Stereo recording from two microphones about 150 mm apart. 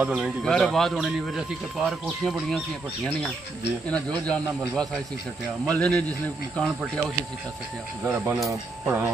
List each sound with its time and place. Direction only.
0.0 s speech: 10° right (ahead or behind)
0.4 s speech: 5° left (ahead or behind)
3.9 s a man's voice: 5° left (ahead or behind)
8.0 s speech: 10° right (ahead or behind)